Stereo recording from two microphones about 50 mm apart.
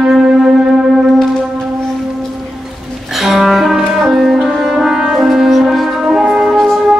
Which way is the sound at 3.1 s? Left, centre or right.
Centre.